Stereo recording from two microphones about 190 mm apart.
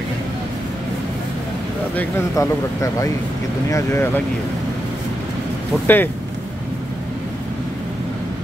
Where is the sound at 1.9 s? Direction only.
15° left (ahead or behind).